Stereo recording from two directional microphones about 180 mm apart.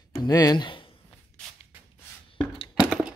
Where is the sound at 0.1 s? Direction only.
25° left (ahead or behind).